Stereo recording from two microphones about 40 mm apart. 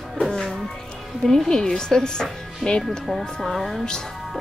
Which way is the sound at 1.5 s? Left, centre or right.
Centre.